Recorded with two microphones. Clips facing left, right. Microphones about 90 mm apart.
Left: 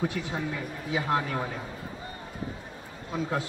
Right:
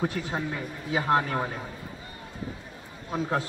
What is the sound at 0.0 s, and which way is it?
A man's voice, 40° right (ahead or behind).